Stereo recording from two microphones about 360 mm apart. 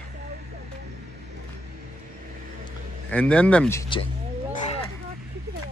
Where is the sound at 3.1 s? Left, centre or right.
Centre.